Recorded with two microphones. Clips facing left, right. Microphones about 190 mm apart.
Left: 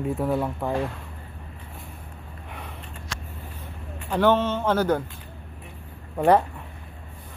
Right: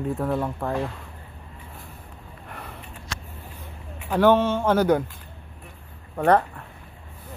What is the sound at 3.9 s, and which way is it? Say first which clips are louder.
A man's voice: right 2 dB; 5° right (ahead or behind).